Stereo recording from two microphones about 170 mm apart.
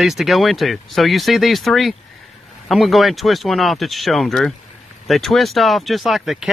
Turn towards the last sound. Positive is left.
turn(degrees=0)  # may be behind; listen again after turning